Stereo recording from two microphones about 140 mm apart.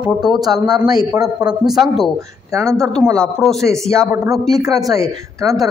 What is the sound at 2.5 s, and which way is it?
Speech, 20° right (ahead or behind).